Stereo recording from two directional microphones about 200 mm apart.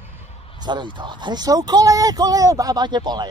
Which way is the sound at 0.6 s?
20° right (ahead or behind).